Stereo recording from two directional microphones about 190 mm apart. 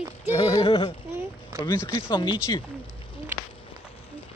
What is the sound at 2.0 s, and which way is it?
Speech, 25° left (ahead or behind).